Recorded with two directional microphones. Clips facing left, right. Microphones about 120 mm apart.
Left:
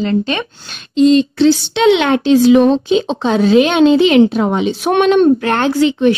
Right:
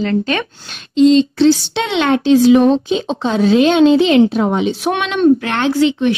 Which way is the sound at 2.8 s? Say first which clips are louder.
Left 3 dB; 70° left (ahead or behind).